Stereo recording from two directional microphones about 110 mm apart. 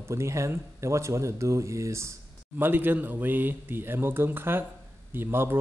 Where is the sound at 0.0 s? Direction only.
25° right (ahead or behind).